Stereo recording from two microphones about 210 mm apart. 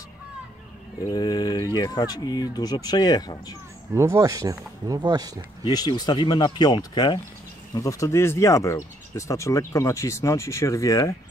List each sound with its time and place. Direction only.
1.0 s speech: 20° left (ahead or behind)
3.9 s speech: 15° right (ahead or behind)
5.6 s speech: 20° left (ahead or behind)